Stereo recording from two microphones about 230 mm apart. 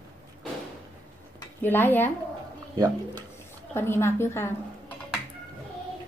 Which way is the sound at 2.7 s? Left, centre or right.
Centre.